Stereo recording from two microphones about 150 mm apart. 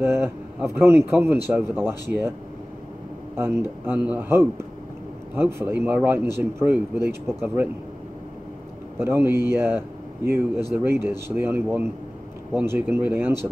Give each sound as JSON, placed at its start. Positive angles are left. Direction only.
{"t": 0.0, "sound": "speech", "side_deg": -15}
{"t": 3.3, "sound": "speech", "side_deg": -15}
{"t": 8.9, "sound": "speech", "side_deg": -15}